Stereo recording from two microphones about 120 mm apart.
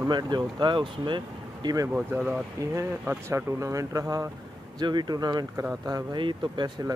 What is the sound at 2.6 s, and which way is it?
Speech, 25° right (ahead or behind).